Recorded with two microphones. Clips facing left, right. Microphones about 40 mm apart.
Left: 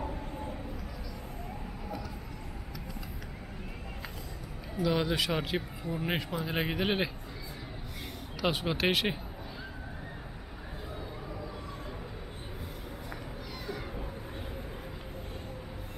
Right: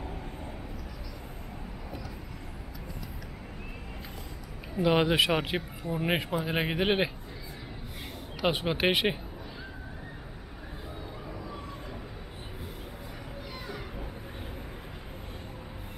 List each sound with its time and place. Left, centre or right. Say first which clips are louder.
4.7 s speech: right 5 dB; right
8.4 s speech: right 2 dB; centre